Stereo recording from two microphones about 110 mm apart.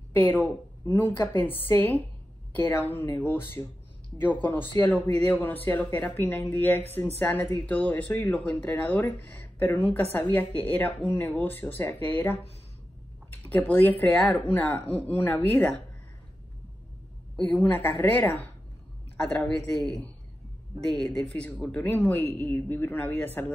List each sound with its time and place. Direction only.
0.1 s a woman's voice: 15° left (ahead or behind)
17.5 s speech: 15° left (ahead or behind)
19.8 s speech: 10° left (ahead or behind)